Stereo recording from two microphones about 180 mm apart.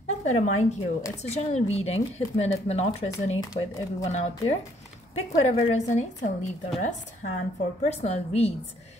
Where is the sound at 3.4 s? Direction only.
20° left (ahead or behind).